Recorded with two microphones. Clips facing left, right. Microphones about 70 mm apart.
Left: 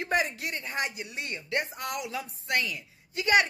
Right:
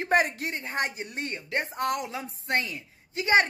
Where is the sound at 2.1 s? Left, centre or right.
Right.